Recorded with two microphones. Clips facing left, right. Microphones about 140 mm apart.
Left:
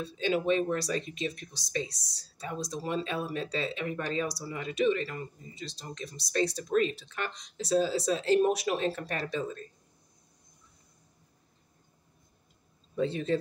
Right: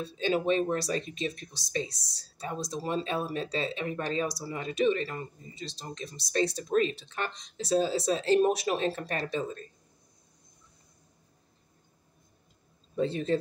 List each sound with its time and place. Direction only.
0.2 s speech: 35° right (ahead or behind)
0.7 s speech: 25° right (ahead or behind)
12.9 s a man's voice: 35° right (ahead or behind)